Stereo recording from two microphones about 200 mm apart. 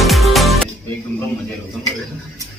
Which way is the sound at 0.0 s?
Centre (ahead or behind).